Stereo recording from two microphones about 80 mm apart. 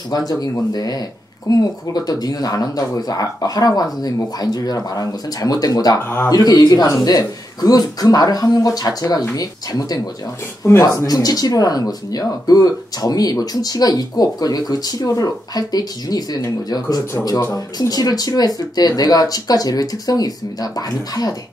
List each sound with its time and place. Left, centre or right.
0.3 s speech: left
6.0 s speech: left
6.3 s speech: left
10.6 s speech: left
11.1 s speech: left